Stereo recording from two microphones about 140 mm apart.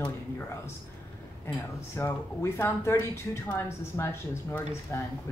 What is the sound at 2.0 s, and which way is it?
Speech, 20° left (ahead or behind).